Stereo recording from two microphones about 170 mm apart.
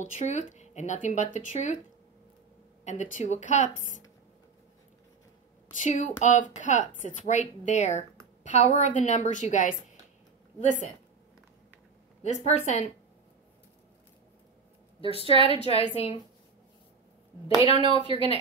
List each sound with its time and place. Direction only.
0.0 s a woman's voice: 45° left (ahead or behind)
2.8 s a woman's voice: 45° left (ahead or behind)
5.8 s a woman's voice: 45° left (ahead or behind)
12.2 s a woman's voice: 40° left (ahead or behind)
15.0 s a woman's voice: 35° left (ahead or behind)
18.0 s speech: 30° right (ahead or behind)